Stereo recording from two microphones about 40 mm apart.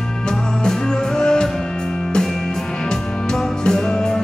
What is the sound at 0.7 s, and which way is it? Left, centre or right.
Music, centre.